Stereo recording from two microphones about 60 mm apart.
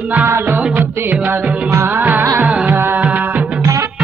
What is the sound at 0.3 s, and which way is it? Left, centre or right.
Music, right.